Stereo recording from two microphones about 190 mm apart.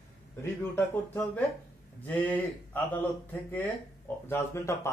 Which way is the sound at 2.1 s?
10° left (ahead or behind).